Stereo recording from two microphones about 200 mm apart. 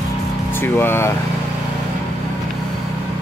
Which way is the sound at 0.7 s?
10° left (ahead or behind).